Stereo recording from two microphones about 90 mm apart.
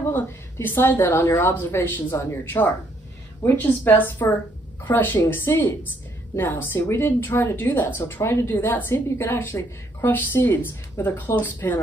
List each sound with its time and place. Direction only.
0.1 s a woman's voice: 25° left (ahead or behind)